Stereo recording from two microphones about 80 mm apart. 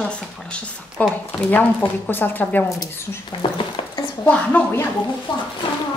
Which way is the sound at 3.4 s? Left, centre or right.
Left.